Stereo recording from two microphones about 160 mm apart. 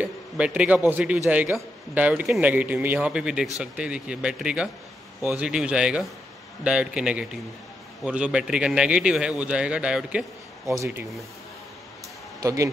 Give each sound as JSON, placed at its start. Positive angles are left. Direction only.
{"t": 0.0, "sound": "a man's voice", "side_deg": -10}
{"t": 12.4, "sound": "speech", "side_deg": -20}